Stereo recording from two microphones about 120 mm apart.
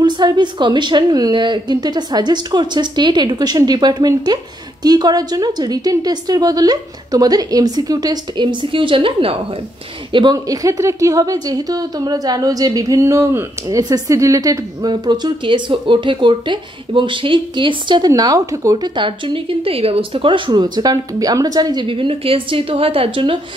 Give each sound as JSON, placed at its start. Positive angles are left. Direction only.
{"t": 0.0, "sound": "a woman's voice", "side_deg": -40}
{"t": 10.1, "sound": "a woman's voice", "side_deg": -35}
{"t": 18.9, "sound": "a woman's voice", "side_deg": -45}
{"t": 21.8, "sound": "a woman's voice", "side_deg": -50}